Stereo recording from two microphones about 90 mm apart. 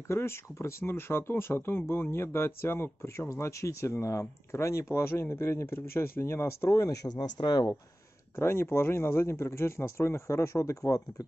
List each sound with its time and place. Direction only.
0.1 s speech: 30° left (ahead or behind); by 7.7 s 50° left (ahead or behind)
8.4 s speech: 25° left (ahead or behind)